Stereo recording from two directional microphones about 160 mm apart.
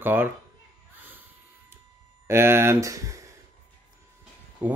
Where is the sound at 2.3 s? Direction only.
15° right (ahead or behind).